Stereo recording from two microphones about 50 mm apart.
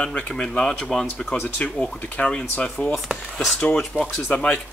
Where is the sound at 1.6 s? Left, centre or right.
Left.